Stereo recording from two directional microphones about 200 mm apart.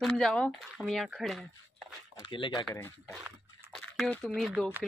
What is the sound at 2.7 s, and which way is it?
Speech, 10° left (ahead or behind).